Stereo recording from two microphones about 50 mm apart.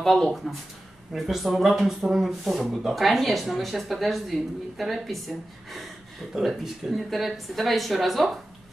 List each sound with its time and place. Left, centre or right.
0.0 s speech: centre